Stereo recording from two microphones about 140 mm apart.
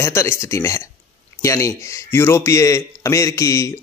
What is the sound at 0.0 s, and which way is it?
A man's voice, 20° left (ahead or behind).